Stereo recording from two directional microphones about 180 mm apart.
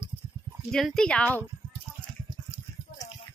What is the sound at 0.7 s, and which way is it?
Speech, centre (ahead or behind).